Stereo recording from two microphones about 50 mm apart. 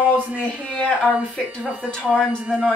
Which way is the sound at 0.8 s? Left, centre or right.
Left.